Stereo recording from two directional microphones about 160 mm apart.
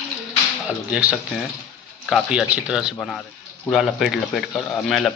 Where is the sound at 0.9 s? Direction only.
10° right (ahead or behind).